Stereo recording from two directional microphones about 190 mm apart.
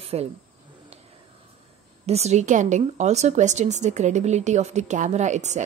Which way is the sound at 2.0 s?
35° right (ahead or behind).